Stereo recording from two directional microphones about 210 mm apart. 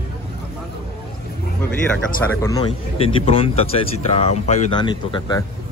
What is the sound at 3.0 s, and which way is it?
Speech, 25° left (ahead or behind).